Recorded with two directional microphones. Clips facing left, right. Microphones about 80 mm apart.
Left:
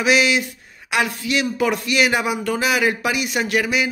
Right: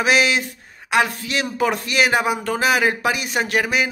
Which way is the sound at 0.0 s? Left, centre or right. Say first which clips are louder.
Even; right.